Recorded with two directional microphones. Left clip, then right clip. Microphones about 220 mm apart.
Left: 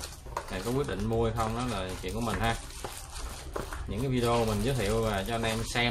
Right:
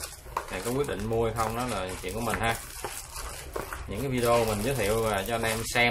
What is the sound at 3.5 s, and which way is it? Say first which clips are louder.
Speech: right 1 dB; centre (ahead or behind).